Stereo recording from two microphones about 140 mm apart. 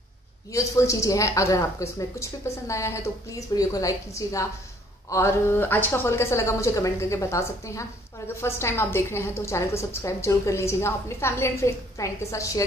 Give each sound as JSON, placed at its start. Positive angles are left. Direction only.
{"t": 0.5, "sound": "a woman's voice", "side_deg": 20}